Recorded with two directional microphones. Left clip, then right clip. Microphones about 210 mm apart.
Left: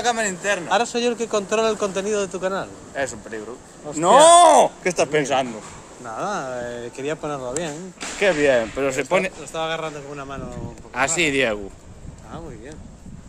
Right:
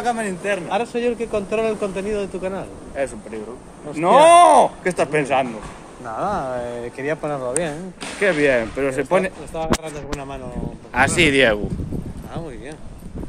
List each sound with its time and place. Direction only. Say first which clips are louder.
0.0 s speech: left 1 dB; 50° left (ahead or behind)
4.9 s speech: right 2 dB; 35° left (ahead or behind)
6.0 s speech: right 3 dB; 10° left (ahead or behind)
8.2 s speech: even; 20° left (ahead or behind)
8.9 s speech: right 2 dB; 5° left (ahead or behind)
9.5 s speech: right 1 dB; 45° left (ahead or behind)
10.9 s speech: right 4 dB; centre (ahead or behind)